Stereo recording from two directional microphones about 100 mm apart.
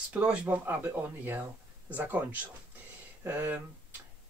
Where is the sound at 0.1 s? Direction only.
10° right (ahead or behind).